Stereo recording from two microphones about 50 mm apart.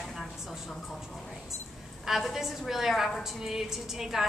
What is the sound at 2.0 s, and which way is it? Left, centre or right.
A woman's voice, centre.